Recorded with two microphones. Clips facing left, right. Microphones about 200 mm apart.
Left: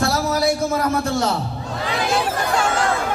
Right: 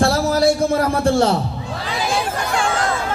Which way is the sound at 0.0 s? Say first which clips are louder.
Right 4 dB; 30° right (ahead or behind).